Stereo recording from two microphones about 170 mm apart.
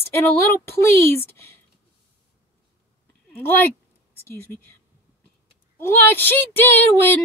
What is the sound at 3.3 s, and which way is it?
Speech, 10° left (ahead or behind).